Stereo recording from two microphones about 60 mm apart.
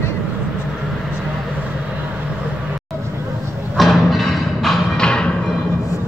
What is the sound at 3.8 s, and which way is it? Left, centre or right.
Music, centre.